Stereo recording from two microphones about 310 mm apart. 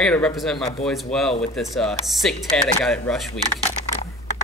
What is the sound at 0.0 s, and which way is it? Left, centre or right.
Speech, centre.